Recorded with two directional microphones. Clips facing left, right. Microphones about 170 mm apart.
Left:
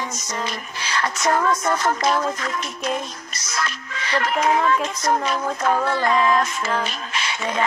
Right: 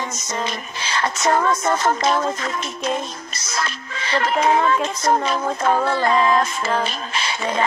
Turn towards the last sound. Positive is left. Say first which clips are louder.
# right 2 dB
turn(degrees=-30)  # may be behind; listen again after turning